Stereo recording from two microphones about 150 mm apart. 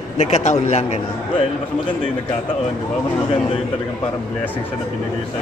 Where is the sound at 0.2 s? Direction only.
50° left (ahead or behind).